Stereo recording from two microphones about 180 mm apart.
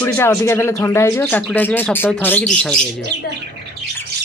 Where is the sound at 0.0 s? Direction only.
10° left (ahead or behind).